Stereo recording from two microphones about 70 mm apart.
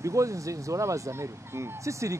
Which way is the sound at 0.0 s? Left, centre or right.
Right.